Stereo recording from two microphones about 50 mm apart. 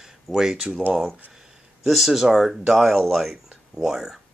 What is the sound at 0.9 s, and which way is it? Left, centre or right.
Speech, centre.